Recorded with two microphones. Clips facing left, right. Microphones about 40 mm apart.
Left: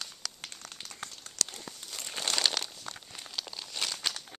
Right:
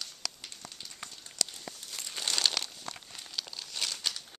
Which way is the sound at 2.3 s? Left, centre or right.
Centre.